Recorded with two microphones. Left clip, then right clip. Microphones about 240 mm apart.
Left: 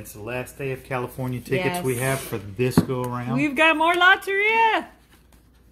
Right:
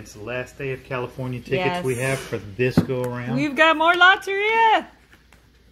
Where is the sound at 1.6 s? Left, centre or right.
Centre.